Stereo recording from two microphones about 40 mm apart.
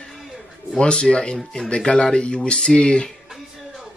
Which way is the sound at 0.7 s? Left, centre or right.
Left.